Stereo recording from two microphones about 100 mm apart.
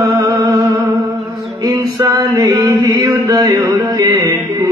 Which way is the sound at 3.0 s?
35° right (ahead or behind).